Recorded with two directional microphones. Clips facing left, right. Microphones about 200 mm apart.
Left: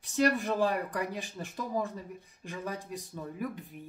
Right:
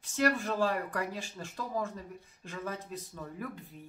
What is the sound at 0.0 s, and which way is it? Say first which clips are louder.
Speech: left 2 dB; 15° left (ahead or behind).